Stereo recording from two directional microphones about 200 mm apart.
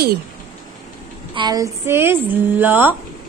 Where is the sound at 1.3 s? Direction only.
20° right (ahead or behind).